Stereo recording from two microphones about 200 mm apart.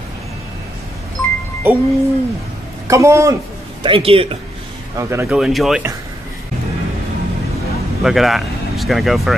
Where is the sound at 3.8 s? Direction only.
25° right (ahead or behind).